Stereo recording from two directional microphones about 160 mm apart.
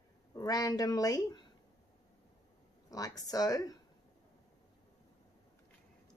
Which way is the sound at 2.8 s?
20° left (ahead or behind).